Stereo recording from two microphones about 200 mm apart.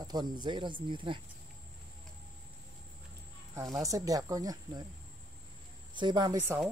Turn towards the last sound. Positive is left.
turn(degrees=-20)  # may be behind; listen again after turning